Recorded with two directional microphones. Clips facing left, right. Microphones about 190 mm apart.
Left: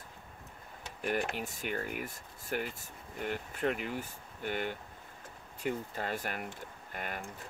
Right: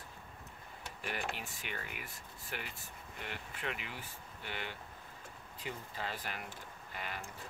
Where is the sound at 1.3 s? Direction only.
45° left (ahead or behind).